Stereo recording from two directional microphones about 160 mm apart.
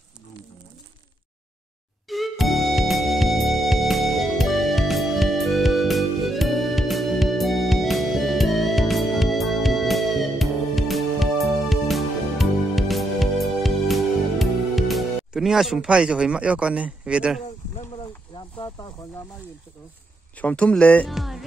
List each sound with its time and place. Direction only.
2.0 s music: centre (ahead or behind)
18.0 s speech: 30° left (ahead or behind)
20.3 s speech: 10° left (ahead or behind)
21.1 s music: centre (ahead or behind)